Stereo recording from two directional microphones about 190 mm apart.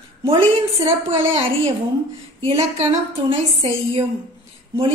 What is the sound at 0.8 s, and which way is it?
A woman's voice, 30° right (ahead or behind).